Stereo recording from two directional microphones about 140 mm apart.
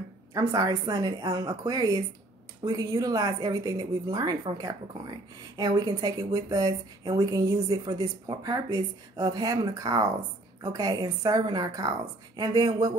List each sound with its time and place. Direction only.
0.3 s speech: 25° right (ahead or behind)